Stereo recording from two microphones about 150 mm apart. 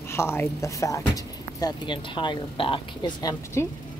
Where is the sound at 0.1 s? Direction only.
15° left (ahead or behind).